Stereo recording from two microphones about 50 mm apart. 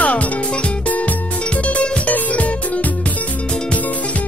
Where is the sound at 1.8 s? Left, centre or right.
Left.